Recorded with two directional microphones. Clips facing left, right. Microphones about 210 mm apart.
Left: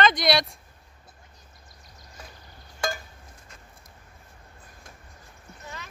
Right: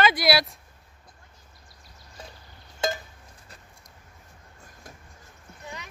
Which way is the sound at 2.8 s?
20° right (ahead or behind).